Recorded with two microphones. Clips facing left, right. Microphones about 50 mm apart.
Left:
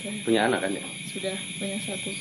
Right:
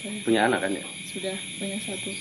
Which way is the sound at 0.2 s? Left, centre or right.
Centre.